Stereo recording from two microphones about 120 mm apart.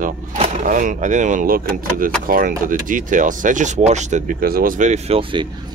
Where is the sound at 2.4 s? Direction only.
90° right.